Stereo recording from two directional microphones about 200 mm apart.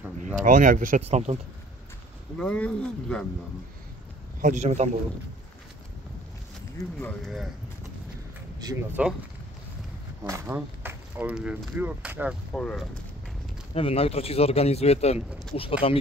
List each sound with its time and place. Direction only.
0.4 s speech: 40° right (ahead or behind)
2.3 s speech: 5° left (ahead or behind)
4.4 s speech: 40° right (ahead or behind)
6.8 s speech: 10° left (ahead or behind)
9.0 s speech: 5° right (ahead or behind)
10.2 s speech: 15° right (ahead or behind)
12.5 s speech: 5° left (ahead or behind)
13.7 s speech: 30° left (ahead or behind)
15.1 s speech: centre (ahead or behind)
15.8 s speech: 30° left (ahead or behind)